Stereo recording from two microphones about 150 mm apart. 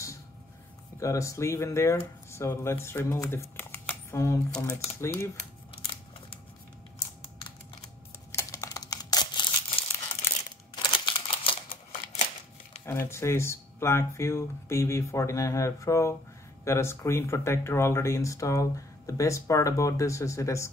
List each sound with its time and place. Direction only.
0.9 s speech: 20° left (ahead or behind)
8.3 s crumpling: 20° left (ahead or behind)
10.7 s camera: 30° left (ahead or behind)
12.8 s speech: 15° left (ahead or behind)